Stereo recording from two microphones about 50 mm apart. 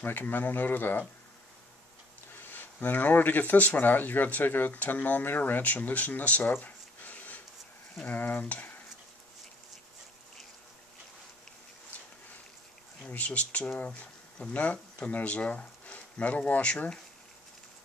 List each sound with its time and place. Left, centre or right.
0.0 s speech: left
2.3 s speech: left
6.6 s a sound: left
8.1 s speech: left
13.0 s speech: left